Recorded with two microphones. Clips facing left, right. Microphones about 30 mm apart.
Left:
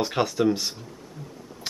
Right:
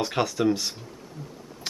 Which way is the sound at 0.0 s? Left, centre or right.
Centre.